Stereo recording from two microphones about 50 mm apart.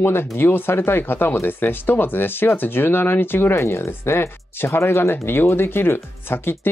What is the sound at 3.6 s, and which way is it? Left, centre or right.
Speech, left.